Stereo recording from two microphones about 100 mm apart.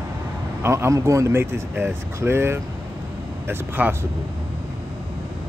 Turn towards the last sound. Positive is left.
turn(degrees=-20)  # may be behind; listen again after turning